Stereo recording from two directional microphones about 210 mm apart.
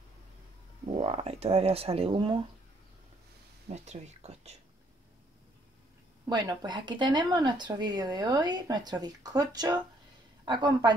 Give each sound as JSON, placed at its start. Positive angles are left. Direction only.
{"t": 0.9, "sound": "speech", "side_deg": -30}
{"t": 3.6, "sound": "speech", "side_deg": -30}
{"t": 6.2, "sound": "speech", "side_deg": -20}